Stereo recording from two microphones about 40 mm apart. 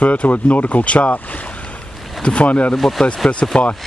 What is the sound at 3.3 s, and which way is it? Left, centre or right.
Speech, left.